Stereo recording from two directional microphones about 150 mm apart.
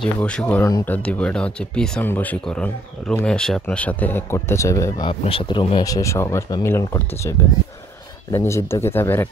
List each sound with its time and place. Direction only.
0.0 s speech: 5° left (ahead or behind)
5.0 s speech: 35° left (ahead or behind); by 9.3 s 15° left (ahead or behind)